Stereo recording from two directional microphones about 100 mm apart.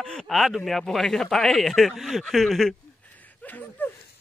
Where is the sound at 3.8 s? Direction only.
20° left (ahead or behind).